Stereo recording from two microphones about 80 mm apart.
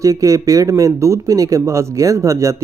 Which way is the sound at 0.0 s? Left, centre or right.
Right.